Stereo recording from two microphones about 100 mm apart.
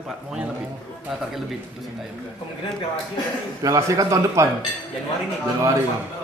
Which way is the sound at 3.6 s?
35° right (ahead or behind).